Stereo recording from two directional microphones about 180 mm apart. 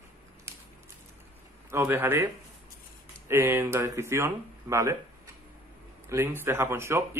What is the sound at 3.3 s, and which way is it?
Speech, 15° right (ahead or behind).